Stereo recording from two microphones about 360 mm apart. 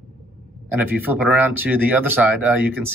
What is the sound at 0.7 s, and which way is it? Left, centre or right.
Speech, centre.